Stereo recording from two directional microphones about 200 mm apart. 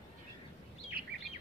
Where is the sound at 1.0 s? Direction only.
50° right (ahead or behind).